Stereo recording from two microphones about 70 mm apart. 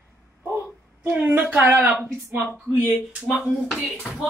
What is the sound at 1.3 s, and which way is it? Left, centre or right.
Speech, right.